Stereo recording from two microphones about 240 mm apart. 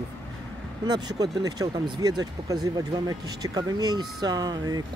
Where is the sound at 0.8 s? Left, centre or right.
Centre.